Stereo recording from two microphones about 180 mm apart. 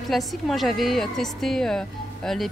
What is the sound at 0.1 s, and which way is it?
A woman's voice, centre (ahead or behind).